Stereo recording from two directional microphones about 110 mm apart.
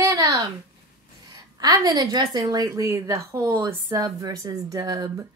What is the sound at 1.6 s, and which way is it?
A woman's voice, 40° right (ahead or behind).